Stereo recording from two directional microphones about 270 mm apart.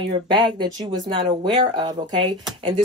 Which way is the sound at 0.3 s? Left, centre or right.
Centre.